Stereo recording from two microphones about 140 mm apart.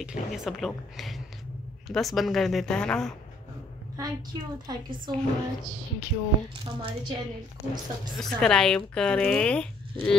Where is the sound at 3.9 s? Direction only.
30° right (ahead or behind).